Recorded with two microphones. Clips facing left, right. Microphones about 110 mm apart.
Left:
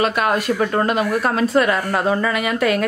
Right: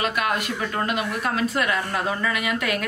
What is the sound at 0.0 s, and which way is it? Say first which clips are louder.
A woman's voice: left 6 dB; 35° left (ahead or behind).